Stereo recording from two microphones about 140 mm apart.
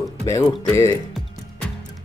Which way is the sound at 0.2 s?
25° left (ahead or behind).